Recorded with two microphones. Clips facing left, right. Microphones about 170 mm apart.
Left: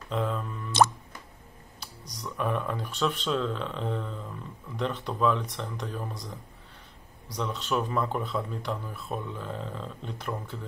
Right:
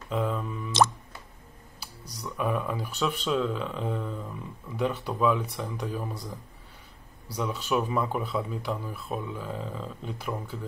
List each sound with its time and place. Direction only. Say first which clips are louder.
0.1 s speech: right 1 dB; 5° right (ahead or behind)
0.7 s plop: left 1 dB; 55° left (ahead or behind)
1.8 s speech: right 1 dB; centre (ahead or behind)